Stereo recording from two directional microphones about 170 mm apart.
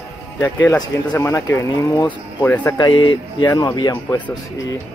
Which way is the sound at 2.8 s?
25° left (ahead or behind).